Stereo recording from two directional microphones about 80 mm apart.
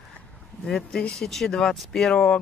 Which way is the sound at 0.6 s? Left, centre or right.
Centre.